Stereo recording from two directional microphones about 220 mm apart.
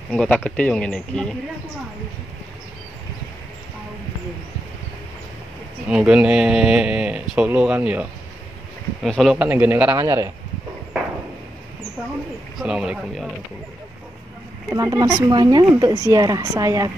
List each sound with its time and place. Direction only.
0.1 s speech: 5° left (ahead or behind)
5.9 s a woman's voice: 5° right (ahead or behind)
12.5 s speech: 5° right (ahead or behind)
14.7 s a woman's voice: 15° right (ahead or behind)